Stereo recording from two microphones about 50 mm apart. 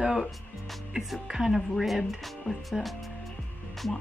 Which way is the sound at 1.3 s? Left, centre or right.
Centre.